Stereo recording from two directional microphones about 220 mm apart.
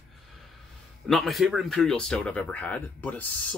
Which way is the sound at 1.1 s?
Centre (ahead or behind).